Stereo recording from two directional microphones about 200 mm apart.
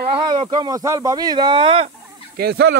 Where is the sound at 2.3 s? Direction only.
55° right (ahead or behind).